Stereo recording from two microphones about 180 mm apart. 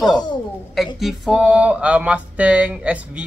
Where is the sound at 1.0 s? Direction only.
Centre (ahead or behind).